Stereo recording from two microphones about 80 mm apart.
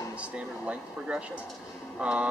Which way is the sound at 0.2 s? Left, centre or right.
Centre.